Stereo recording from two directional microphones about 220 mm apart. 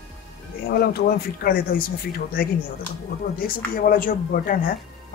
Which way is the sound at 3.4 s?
40° left (ahead or behind).